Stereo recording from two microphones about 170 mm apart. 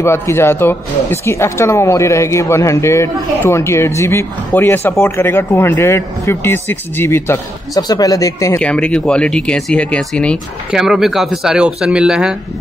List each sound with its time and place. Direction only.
0.0 s speech: 15° left (ahead or behind)
8.5 s speech: 5° left (ahead or behind)